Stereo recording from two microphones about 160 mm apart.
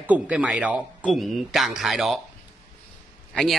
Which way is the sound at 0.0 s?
10° right (ahead or behind).